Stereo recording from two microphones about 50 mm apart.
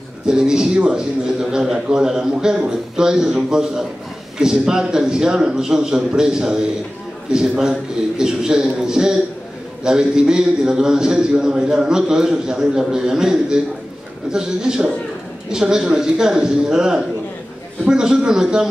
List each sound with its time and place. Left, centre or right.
0.3 s a man's voice: centre